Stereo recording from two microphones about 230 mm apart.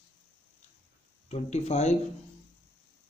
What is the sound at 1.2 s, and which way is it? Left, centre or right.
Speech, left.